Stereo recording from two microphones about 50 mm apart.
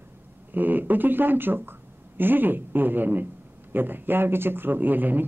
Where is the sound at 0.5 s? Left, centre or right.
Right.